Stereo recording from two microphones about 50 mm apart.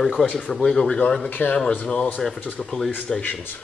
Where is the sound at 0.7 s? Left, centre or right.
Centre.